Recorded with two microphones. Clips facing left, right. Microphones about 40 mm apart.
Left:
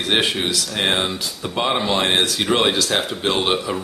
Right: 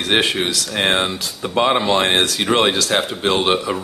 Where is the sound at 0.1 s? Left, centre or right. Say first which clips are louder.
Right 2 dB; centre.